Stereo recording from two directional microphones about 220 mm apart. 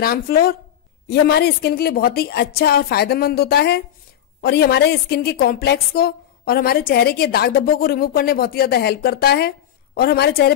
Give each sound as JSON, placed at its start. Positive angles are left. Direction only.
{"t": 0.0, "sound": "a woman's voice", "side_deg": 40}